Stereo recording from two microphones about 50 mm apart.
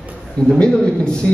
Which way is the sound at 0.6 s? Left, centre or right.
Centre.